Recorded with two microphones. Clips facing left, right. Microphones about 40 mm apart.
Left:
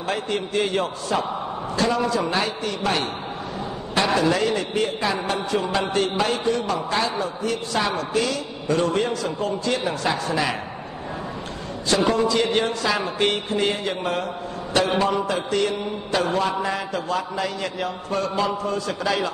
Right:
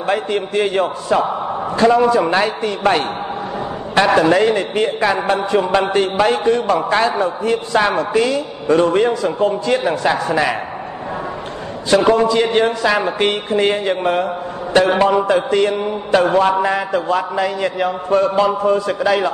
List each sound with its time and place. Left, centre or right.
0.0 s a man's voice: right
1.0 s a man's voice: right
4.1 s a man's voice: right
11.9 s a man's voice: right